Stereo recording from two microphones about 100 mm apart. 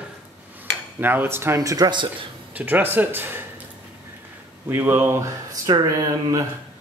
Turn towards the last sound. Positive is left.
turn(degrees=-35)  # may be behind; listen again after turning